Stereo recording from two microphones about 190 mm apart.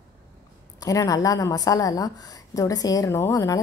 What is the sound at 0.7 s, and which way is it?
A woman's voice, 20° left (ahead or behind).